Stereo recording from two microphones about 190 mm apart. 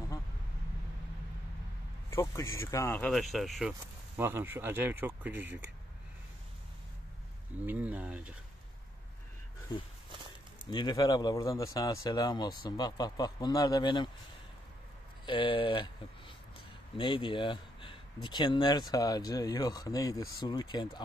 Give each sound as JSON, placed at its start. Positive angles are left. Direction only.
{"t": 2.0, "sound": "speech", "side_deg": 15}
{"t": 3.1, "sound": "speech", "side_deg": 0}
{"t": 4.2, "sound": "speech", "side_deg": -10}
{"t": 7.6, "sound": "speech", "side_deg": -10}
{"t": 9.7, "sound": "speech", "side_deg": 20}
{"t": 15.2, "sound": "speech", "side_deg": 25}